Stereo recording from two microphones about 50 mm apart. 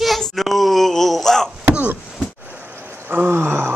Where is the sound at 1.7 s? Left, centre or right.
Right.